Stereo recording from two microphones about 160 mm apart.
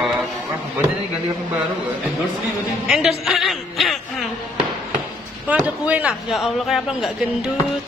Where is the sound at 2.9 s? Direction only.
Centre (ahead or behind).